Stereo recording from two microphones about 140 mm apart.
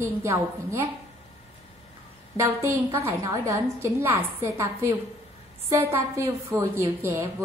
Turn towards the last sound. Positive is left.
turn(degrees=-15)  # may be behind; listen again after turning